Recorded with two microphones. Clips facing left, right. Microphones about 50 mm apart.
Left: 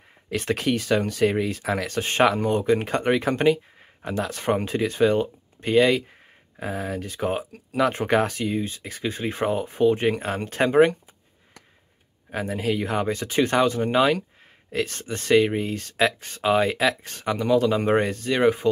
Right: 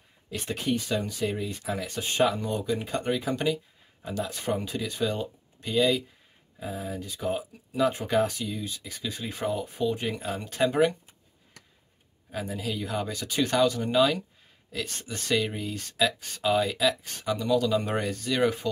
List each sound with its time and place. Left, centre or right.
0.3 s speech: left
2.0 s speech: left
2.4 s speech: left
12.3 s speech: left